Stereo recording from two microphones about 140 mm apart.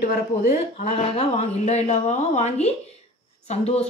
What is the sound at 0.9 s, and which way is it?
A woman's voice, 50° left (ahead or behind).